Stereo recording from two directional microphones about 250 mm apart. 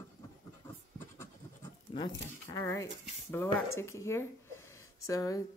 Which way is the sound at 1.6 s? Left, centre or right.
Centre.